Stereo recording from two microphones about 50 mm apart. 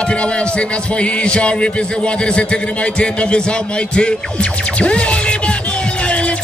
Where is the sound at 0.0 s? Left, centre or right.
Left.